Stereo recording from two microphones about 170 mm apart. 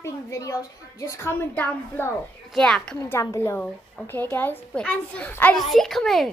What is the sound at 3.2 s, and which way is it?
A child's voice, 15° left (ahead or behind).